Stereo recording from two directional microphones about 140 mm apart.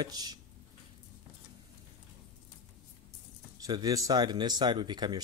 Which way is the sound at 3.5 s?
25° right (ahead or behind).